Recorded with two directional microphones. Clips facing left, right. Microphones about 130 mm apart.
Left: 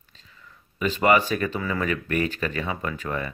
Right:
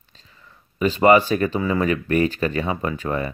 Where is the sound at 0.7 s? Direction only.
35° right (ahead or behind).